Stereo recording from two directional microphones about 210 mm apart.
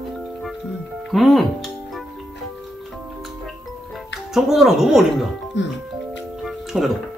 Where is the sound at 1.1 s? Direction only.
Centre (ahead or behind).